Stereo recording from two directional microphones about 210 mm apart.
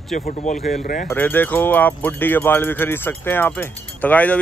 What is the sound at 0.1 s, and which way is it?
Speech, 35° left (ahead or behind).